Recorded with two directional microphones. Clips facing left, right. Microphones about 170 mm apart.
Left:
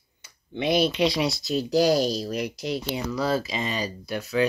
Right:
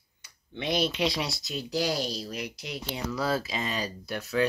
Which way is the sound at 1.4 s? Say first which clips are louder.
Left 10 dB; 40° left (ahead or behind).